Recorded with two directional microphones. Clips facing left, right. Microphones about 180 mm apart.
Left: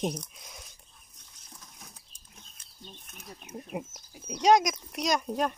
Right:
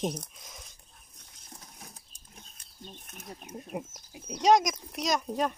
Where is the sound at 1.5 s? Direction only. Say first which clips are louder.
Right 2 dB; 40° right (ahead or behind).